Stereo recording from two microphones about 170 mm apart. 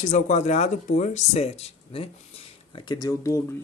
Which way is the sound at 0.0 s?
45° left (ahead or behind).